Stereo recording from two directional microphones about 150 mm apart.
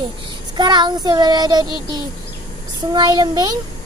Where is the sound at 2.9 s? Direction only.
30° right (ahead or behind).